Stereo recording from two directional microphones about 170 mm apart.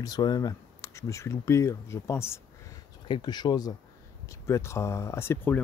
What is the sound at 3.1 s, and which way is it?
Speech, 25° left (ahead or behind).